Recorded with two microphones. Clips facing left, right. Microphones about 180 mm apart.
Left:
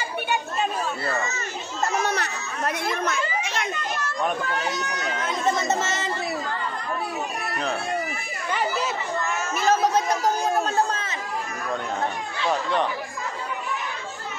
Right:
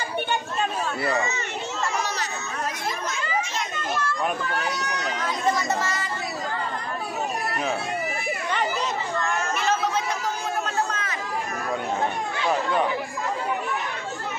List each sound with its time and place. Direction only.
1.0 s speech: 15° right (ahead or behind)
1.8 s chatter: 45° left (ahead or behind)
2.1 s chatter: 60° left (ahead or behind)
5.5 s speech: 25° left (ahead or behind)
9.2 s speech: 5° left (ahead or behind)
9.6 s speech: 40° left (ahead or behind)
10.9 s chatter: 30° left (ahead or behind)